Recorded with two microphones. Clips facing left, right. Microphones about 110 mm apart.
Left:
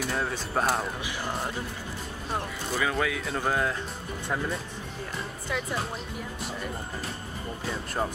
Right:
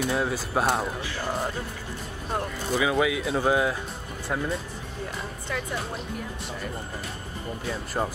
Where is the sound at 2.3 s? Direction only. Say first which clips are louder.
Right 4 dB; 5° right (ahead or behind).